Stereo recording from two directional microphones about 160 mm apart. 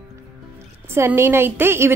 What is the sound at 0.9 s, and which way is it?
A woman's voice, 15° right (ahead or behind).